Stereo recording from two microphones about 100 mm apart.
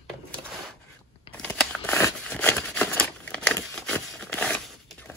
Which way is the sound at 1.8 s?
20° left (ahead or behind).